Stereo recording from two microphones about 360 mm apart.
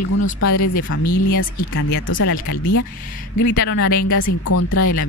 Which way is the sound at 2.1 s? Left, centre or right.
Left.